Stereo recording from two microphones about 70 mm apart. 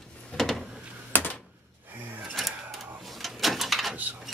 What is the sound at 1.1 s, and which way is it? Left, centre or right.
Typewriter, left.